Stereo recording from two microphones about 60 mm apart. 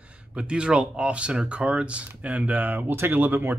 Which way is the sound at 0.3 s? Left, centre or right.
Centre.